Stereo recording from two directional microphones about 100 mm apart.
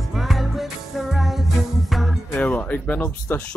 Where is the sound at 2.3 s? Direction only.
15° left (ahead or behind).